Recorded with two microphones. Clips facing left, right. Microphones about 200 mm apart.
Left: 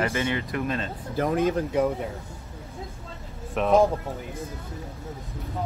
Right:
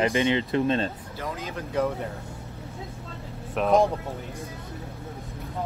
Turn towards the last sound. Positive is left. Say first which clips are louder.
# left 1 dB
turn(degrees=0)  # may be behind; listen again after turning